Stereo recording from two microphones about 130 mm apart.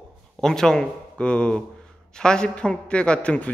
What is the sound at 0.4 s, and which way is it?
A man's voice, 5° left (ahead or behind).